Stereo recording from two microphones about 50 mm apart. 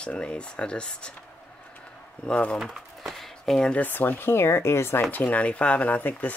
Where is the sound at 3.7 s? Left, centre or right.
Left.